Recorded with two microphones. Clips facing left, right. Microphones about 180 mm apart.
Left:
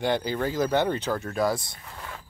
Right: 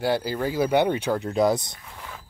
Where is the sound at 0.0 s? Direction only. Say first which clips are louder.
Right 1 dB; 5° right (ahead or behind).